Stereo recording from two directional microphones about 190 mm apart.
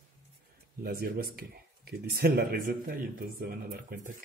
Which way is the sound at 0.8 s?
50° right (ahead or behind).